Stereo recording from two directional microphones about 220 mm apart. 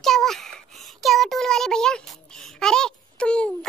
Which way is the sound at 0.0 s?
Centre (ahead or behind).